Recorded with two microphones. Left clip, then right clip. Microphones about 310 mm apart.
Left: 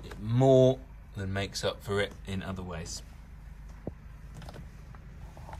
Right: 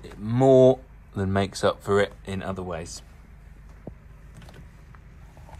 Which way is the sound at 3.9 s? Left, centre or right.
Right.